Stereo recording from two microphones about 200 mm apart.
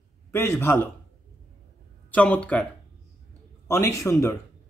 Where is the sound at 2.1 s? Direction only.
5° left (ahead or behind).